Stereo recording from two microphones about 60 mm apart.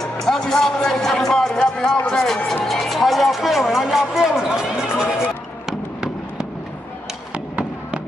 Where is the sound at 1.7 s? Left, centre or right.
Centre.